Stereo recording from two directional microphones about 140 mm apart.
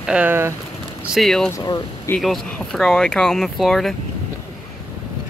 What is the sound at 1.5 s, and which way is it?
Speech, 25° left (ahead or behind).